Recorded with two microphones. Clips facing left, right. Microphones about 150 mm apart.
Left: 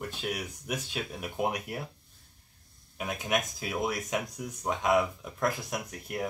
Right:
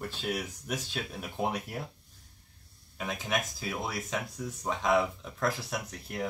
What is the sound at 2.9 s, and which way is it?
Speech, 15° left (ahead or behind).